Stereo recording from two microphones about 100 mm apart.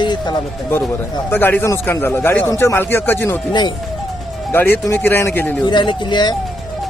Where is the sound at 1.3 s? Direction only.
20° left (ahead or behind).